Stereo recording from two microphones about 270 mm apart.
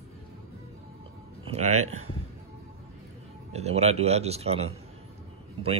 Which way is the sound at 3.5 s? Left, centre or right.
Right.